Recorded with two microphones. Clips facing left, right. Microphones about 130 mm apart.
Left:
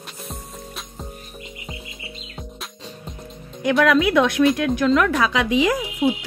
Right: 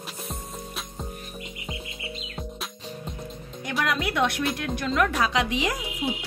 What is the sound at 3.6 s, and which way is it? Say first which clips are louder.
Speech: left 11 dB; 90° left.